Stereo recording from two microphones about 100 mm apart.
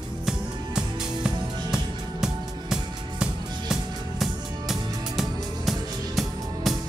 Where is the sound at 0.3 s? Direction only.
5° right (ahead or behind).